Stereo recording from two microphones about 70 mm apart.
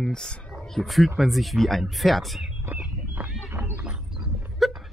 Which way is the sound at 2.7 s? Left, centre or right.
Right.